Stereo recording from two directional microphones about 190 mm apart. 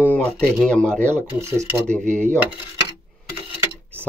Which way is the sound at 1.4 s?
15° right (ahead or behind).